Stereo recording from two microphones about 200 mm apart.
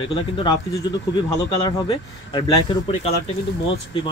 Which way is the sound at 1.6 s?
25° left (ahead or behind).